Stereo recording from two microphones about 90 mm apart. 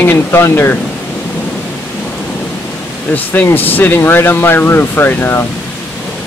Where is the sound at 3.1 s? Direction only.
20° left (ahead or behind).